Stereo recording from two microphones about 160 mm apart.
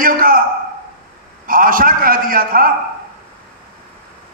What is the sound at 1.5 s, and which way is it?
A man's voice, 60° right (ahead or behind).